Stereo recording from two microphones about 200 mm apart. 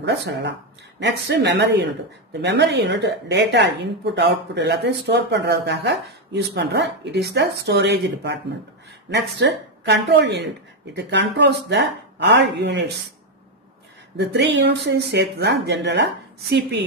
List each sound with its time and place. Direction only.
0.0 s a woman's voice: 60° right (ahead or behind)
14.1 s a woman's voice: 60° right (ahead or behind)